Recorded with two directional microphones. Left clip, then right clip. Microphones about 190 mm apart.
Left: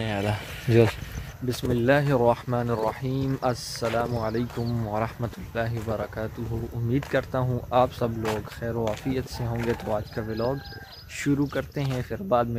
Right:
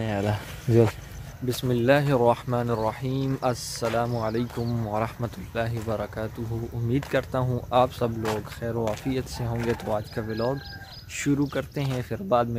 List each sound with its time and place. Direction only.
0.0 s speech: 25° right (ahead or behind)
1.5 s speech: 5° right (ahead or behind)